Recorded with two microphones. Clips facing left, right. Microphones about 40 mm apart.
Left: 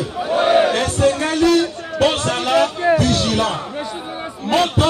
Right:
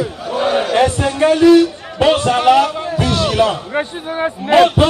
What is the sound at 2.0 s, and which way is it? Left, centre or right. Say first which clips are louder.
Speech: right 5 dB; centre.